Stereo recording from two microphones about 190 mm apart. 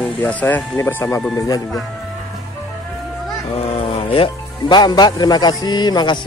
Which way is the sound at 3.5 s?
30° left (ahead or behind).